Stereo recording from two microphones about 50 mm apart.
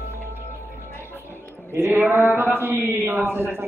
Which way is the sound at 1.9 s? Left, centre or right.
Right.